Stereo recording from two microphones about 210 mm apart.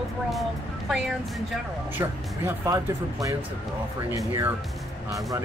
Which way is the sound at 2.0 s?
15° right (ahead or behind).